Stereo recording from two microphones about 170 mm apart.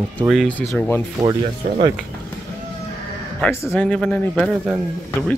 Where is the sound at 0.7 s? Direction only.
10° left (ahead or behind).